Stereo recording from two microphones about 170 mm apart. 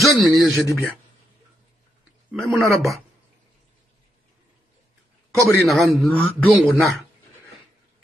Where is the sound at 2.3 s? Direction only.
Centre (ahead or behind).